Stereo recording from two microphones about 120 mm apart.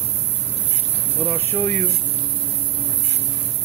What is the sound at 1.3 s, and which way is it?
Speech, 15° left (ahead or behind).